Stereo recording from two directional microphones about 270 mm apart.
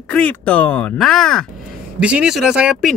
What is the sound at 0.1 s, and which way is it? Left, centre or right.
Speech, centre.